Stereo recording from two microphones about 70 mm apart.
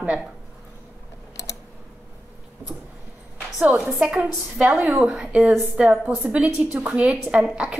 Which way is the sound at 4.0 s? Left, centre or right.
Centre.